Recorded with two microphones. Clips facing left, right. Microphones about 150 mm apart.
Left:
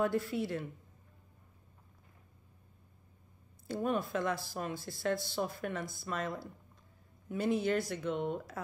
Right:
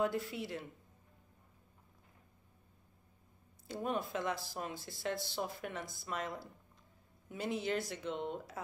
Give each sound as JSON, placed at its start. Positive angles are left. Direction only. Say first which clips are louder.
{"t": 0.2, "sound": "speech", "louder": "left 6 dB", "side_deg": -15}
{"t": 3.6, "sound": "speech", "louder": "left 4 dB", "side_deg": -20}